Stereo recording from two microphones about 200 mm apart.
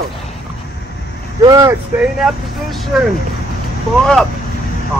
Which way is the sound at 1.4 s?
15° right (ahead or behind).